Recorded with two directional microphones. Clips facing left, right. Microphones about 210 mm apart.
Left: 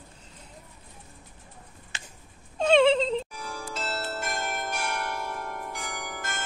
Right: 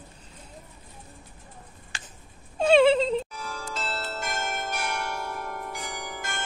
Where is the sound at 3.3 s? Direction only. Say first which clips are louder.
Right 1 dB; 10° left (ahead or behind).